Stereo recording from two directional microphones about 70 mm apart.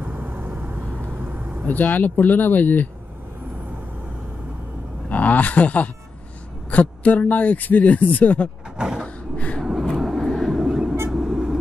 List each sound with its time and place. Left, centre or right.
0.0 s vehicle: right
1.7 s speech: left
5.1 s a man's voice: left
8.7 s vehicle: centre
9.0 s a sound: centre
9.6 s vehicle: centre